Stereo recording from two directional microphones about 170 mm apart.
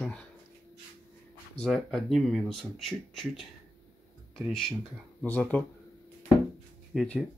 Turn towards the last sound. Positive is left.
turn(degrees=5)  # may be behind; listen again after turning